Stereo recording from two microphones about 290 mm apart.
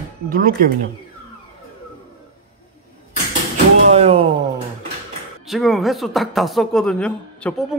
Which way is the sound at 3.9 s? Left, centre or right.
Right.